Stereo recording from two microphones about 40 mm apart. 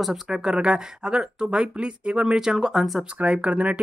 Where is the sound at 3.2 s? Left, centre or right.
Right.